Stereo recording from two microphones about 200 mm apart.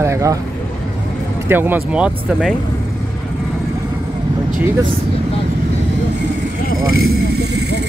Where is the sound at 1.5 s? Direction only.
10° right (ahead or behind).